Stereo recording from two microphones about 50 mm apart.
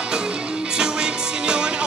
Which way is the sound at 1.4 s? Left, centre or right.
Centre.